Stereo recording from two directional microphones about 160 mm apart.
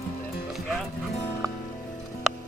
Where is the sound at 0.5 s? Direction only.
Centre (ahead or behind).